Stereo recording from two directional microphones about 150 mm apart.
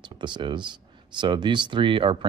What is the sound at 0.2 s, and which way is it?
Speech, 30° right (ahead or behind).